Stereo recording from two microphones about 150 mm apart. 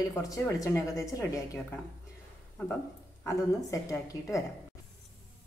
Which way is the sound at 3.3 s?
20° left (ahead or behind).